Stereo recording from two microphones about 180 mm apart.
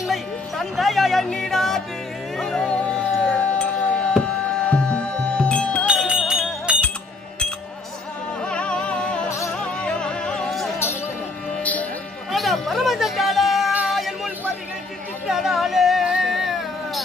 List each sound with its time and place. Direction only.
0.0 s music: centre (ahead or behind)
2.3 s a sound: centre (ahead or behind)
3.3 s music: 5° left (ahead or behind)
5.9 s music: 5° right (ahead or behind)
8.5 s music: 5° left (ahead or behind)
9.3 s music: 15° left (ahead or behind)
9.6 s music: 5° left (ahead or behind)
15.2 s a sound: centre (ahead or behind)